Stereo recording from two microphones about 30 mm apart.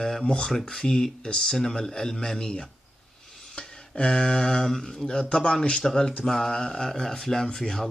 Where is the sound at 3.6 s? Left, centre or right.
Left.